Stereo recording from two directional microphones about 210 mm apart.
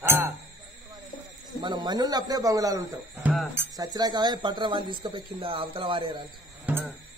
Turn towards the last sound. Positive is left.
turn(degrees=-5)  # may be behind; listen again after turning